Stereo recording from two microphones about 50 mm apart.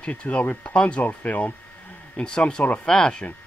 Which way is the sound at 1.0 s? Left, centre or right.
Left.